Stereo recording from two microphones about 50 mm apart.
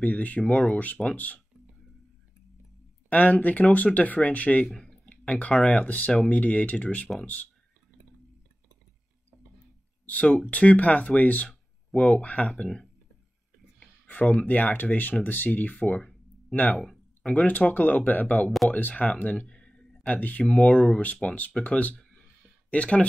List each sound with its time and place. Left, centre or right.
0.0 s speech: left
0.4 s speech: centre
1.1 s speech: left
3.1 s speech: left
4.8 s a sound: left
5.8 s speech: left
10.0 s speech: left
14.0 s a sound: left
14.4 s speech: left
16.7 s speech: centre
17.4 s speech: left; by 19.9 s centre
20.0 s speech: left
21.0 s speech: left